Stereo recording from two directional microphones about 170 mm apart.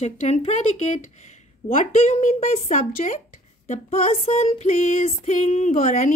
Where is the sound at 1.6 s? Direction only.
45° left (ahead or behind).